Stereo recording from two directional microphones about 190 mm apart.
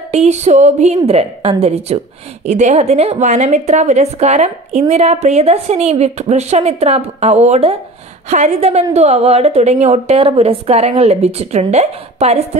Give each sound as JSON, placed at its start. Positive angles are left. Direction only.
{"t": 0.1, "sound": "a woman's voice", "side_deg": -35}